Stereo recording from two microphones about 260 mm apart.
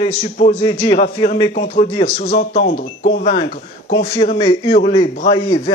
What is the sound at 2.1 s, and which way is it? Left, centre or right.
Speech, left.